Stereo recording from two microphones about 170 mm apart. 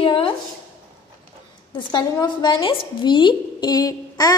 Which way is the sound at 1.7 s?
25° left (ahead or behind).